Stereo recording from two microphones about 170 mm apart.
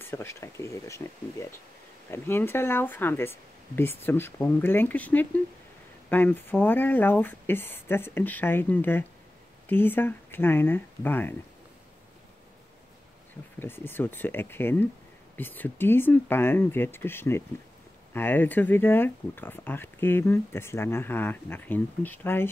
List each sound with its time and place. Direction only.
0.0 s speech: 15° left (ahead or behind)
13.6 s speech: 15° left (ahead or behind)